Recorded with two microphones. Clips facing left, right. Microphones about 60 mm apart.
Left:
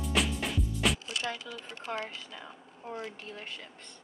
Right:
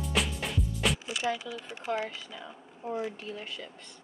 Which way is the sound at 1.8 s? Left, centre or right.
Centre.